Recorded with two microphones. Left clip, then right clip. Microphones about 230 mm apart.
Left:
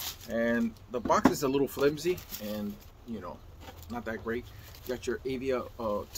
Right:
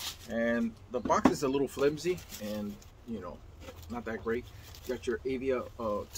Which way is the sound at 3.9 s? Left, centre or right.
Centre.